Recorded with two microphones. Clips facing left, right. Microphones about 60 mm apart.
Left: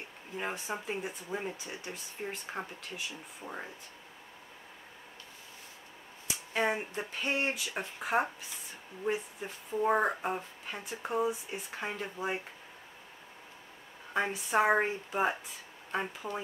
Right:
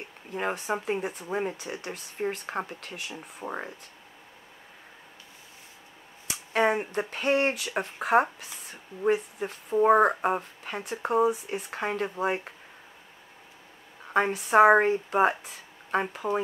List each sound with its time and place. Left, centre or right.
0.4 s speech: right
6.2 s speech: right
14.1 s a woman's voice: right